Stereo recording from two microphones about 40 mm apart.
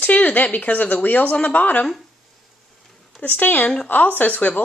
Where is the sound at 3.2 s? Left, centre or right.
Left.